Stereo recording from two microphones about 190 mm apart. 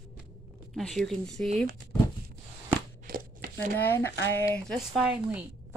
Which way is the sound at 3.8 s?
10° left (ahead or behind).